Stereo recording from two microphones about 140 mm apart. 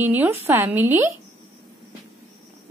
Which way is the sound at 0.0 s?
15° right (ahead or behind).